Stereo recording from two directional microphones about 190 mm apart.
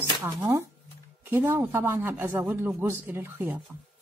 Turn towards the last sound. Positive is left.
turn(degrees=-10)  # may be behind; listen again after turning